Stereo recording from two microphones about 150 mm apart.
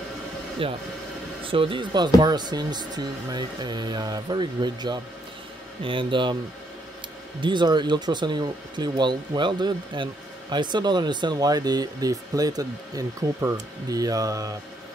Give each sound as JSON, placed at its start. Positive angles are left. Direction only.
{"t": 0.6, "sound": "speech", "side_deg": -35}
{"t": 7.4, "sound": "speech", "side_deg": -30}